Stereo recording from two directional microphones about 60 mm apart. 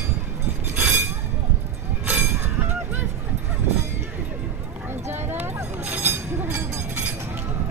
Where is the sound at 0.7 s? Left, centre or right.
Right.